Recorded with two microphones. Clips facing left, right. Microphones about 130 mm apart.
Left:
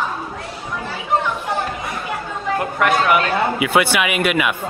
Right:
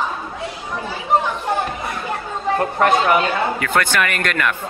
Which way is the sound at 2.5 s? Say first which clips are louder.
Right 1 dB; 30° right (ahead or behind).